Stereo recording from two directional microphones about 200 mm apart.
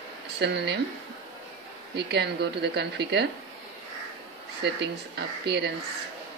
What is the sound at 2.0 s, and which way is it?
Speech, 55° right (ahead or behind).